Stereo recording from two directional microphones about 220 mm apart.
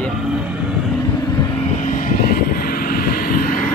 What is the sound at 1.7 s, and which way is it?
Vehicle, 35° left (ahead or behind).